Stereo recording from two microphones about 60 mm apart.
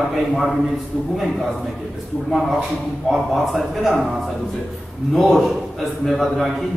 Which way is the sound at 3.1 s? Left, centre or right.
Centre.